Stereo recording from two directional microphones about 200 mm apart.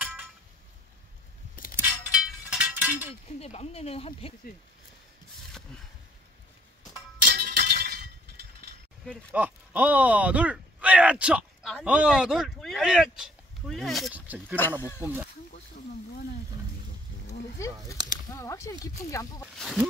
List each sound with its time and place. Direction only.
0.0 s a sound: 5° right (ahead or behind)
1.8 s a sound: 5° right (ahead or behind)
3.3 s speech: 30° left (ahead or behind)
7.2 s music: 45° right (ahead or behind)
9.3 s speech: 10° right (ahead or behind)
17.6 s speech: 15° left (ahead or behind)
19.4 s speech: centre (ahead or behind)